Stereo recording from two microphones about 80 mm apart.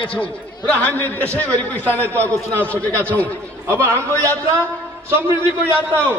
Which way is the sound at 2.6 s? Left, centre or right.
Centre.